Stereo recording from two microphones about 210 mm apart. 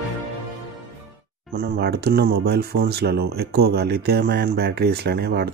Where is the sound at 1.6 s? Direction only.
50° right (ahead or behind).